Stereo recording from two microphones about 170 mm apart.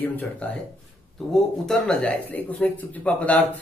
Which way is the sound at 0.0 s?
10° left (ahead or behind).